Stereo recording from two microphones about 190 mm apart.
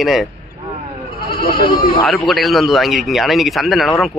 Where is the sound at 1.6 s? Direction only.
25° left (ahead or behind).